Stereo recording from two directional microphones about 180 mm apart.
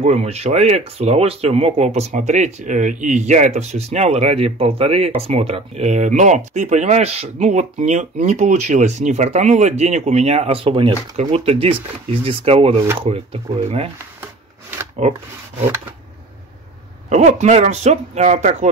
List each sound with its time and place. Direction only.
0.0 s speech: 35° right (ahead or behind)
14.2 s wood: 15° right (ahead or behind)
17.1 s speech: 40° right (ahead or behind)